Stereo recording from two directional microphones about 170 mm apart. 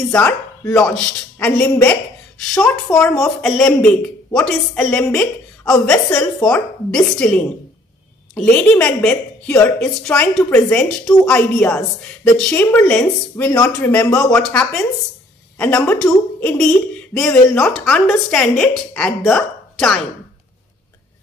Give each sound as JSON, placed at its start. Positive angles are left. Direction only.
{"t": 0.1, "sound": "a woman's voice", "side_deg": 10}
{"t": 3.0, "sound": "a woman's voice", "side_deg": 10}
{"t": 14.3, "sound": "a woman's voice", "side_deg": 5}